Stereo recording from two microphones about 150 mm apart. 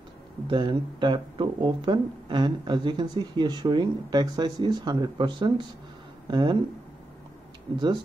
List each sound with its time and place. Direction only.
0.5 s speech: 30° right (ahead or behind)